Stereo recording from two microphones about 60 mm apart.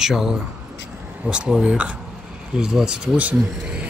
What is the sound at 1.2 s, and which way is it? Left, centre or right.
Speech, centre.